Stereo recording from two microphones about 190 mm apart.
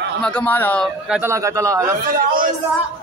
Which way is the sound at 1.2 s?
15° right (ahead or behind).